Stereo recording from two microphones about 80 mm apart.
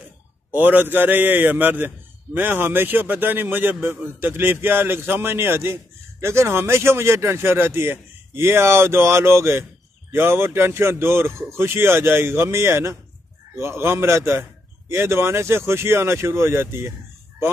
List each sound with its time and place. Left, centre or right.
0.5 s a man's voice: right